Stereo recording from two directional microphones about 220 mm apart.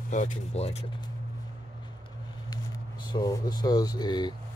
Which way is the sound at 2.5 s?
20° left (ahead or behind).